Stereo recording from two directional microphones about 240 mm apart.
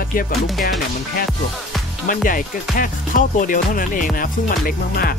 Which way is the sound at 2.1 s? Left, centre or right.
Left.